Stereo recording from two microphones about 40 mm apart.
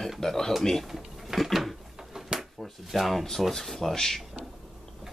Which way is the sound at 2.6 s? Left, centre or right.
Centre.